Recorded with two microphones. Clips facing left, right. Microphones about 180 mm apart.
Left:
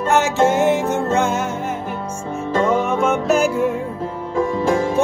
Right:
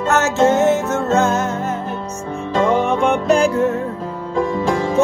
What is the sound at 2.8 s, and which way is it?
Music, 5° left (ahead or behind).